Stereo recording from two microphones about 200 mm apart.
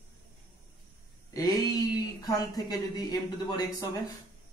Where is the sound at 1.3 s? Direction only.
20° left (ahead or behind).